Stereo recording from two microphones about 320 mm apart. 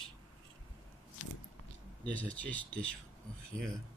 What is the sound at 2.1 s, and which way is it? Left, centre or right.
Speech, centre.